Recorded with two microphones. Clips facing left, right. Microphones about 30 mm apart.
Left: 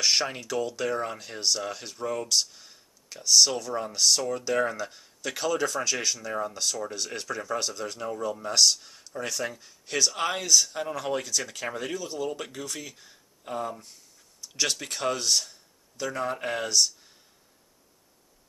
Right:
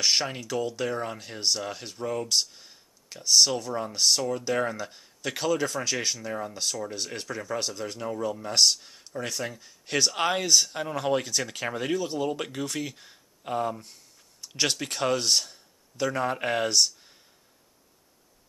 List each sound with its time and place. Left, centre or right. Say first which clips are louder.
0.0 s speech: even; centre
9.8 s speech: right 1 dB; right
10.1 s speech: right 1 dB; centre